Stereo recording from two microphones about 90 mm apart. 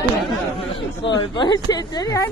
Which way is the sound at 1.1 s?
55° left (ahead or behind).